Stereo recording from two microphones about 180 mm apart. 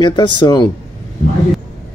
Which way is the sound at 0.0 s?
25° left (ahead or behind).